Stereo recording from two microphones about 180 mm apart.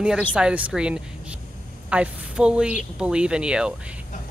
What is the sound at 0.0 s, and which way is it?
A woman's voice, 5° right (ahead or behind).